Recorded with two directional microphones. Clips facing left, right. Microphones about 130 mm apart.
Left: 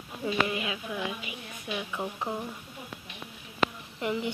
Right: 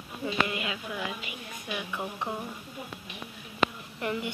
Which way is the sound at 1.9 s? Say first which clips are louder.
Even; centre (ahead or behind).